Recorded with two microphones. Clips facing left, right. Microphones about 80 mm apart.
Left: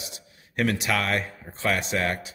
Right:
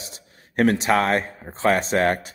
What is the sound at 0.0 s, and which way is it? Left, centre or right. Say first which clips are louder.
A man's voice: right 1 dB; right.